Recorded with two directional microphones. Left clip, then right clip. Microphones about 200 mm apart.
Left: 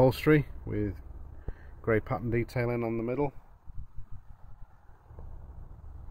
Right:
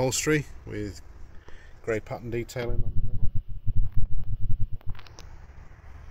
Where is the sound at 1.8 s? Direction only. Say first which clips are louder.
Left 1 dB; 35° left (ahead or behind).